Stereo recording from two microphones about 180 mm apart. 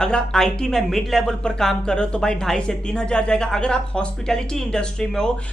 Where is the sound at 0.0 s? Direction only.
5° left (ahead or behind).